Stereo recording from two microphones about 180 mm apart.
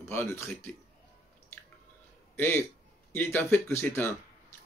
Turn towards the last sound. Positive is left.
turn(degrees=15)  # may be behind; listen again after turning